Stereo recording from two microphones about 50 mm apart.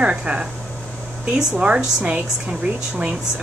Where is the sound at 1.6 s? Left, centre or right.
Right.